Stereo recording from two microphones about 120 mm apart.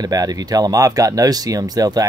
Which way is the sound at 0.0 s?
30° right (ahead or behind).